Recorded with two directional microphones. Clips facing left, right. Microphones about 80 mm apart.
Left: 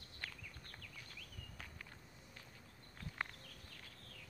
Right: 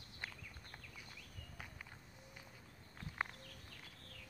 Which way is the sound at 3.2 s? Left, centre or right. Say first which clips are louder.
Right 3 dB; centre.